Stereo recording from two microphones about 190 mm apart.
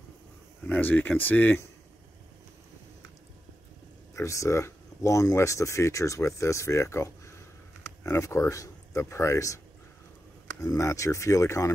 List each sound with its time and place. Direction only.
0.7 s speech: 10° left (ahead or behind)
4.1 s speech: 15° left (ahead or behind)
10.6 s speech: 15° left (ahead or behind)